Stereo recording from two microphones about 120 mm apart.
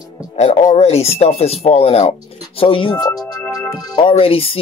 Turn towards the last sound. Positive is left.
turn(degrees=50)  # may be behind; listen again after turning